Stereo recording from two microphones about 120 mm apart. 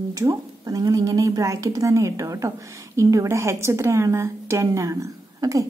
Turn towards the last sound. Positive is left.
turn(degrees=-25)  # may be behind; listen again after turning